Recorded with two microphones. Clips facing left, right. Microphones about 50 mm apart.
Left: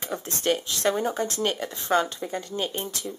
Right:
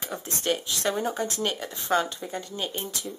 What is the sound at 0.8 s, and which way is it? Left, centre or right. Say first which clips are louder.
Speech: left 3 dB; left.